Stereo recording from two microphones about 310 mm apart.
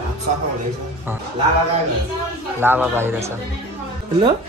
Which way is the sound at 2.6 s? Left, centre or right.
Centre.